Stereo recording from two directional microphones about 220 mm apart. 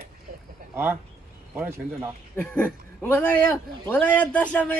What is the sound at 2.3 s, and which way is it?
A woman's voice, 5° left (ahead or behind).